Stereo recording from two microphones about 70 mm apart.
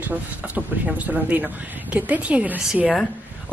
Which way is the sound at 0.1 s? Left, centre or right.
Right.